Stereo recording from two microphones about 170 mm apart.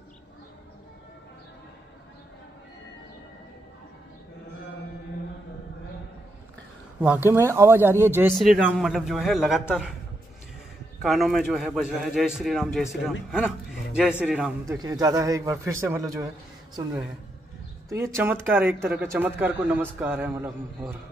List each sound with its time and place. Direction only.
7.2 s speech: 15° right (ahead or behind)
8.4 s a man's voice: 5° right (ahead or behind)
11.0 s a man's voice: centre (ahead or behind)
14.7 s a man's voice: 20° right (ahead or behind)
17.8 s speech: 15° right (ahead or behind)